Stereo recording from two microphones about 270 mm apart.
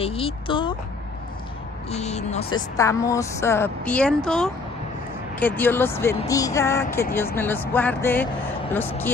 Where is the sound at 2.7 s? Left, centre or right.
Centre.